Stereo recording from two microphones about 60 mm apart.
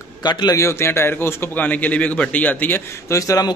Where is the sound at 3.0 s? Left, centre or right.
Left.